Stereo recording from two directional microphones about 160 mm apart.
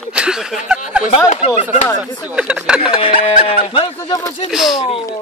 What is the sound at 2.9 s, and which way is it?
Speech, 35° left (ahead or behind).